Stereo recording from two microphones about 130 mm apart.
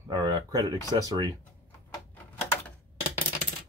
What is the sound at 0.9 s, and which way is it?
Speech, 30° right (ahead or behind).